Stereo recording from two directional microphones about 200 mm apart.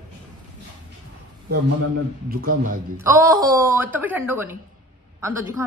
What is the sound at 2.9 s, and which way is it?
A woman's voice, 15° right (ahead or behind).